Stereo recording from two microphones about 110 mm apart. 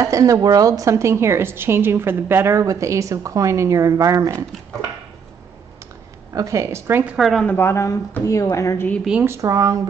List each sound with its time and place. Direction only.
0.0 s a woman's voice: 30° right (ahead or behind)
6.3 s a woman's voice: 30° right (ahead or behind)
7.2 s speech: centre (ahead or behind)
7.4 s a woman's voice: 20° left (ahead or behind)
9.2 s a woman's voice: 25° right (ahead or behind)